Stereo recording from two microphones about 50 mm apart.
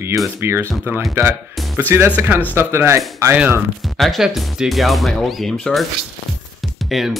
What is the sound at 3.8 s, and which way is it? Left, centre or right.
Speech, centre.